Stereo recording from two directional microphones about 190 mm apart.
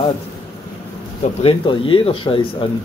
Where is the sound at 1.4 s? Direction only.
25° left (ahead or behind).